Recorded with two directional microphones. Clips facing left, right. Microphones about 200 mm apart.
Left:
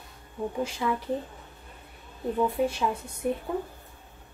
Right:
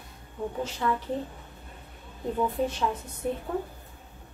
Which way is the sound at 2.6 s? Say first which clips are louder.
Left 1 dB; 10° left (ahead or behind).